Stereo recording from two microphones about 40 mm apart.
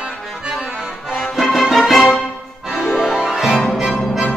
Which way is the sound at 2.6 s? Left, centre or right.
Centre.